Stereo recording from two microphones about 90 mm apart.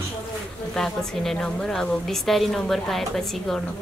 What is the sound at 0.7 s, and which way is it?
Speech, 5° left (ahead or behind).